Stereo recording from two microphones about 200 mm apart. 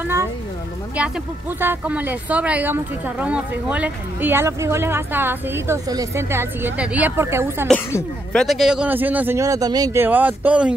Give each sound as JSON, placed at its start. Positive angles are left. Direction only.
{"t": 0.0, "sound": "a sound", "side_deg": -10}
{"t": 1.6, "sound": "a woman's voice", "side_deg": -10}
{"t": 7.6, "sound": "a woman's voice", "side_deg": 5}